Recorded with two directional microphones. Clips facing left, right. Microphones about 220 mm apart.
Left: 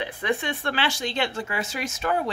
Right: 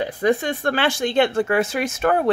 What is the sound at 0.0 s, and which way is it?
Speech, 40° right (ahead or behind).